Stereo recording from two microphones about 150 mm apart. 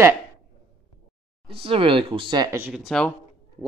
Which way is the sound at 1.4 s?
40° right (ahead or behind).